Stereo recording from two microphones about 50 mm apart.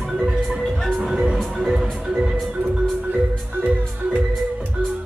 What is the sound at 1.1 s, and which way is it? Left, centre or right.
Music, centre.